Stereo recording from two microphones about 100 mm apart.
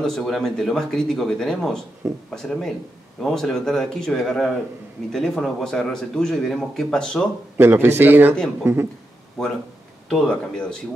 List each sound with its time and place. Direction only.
0.0 s speech: 5° left (ahead or behind)
7.5 s a man's voice: 25° right (ahead or behind)
9.4 s speech: centre (ahead or behind)